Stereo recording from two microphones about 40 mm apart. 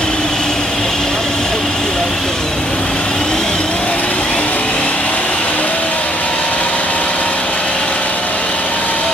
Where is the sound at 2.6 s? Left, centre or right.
Left.